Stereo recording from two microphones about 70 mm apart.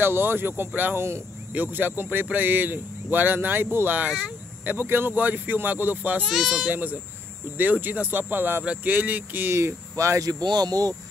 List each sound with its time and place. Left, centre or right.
0.0 s speech: right
1.5 s speech: right
6.2 s speech: centre
6.7 s speech: right
9.5 s speech: right
10.4 s speech: right